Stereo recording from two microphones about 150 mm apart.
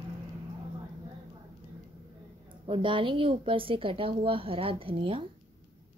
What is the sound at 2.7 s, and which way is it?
A woman's voice, 35° right (ahead or behind).